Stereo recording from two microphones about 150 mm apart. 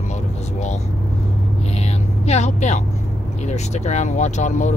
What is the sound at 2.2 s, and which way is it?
Speech, 45° left (ahead or behind).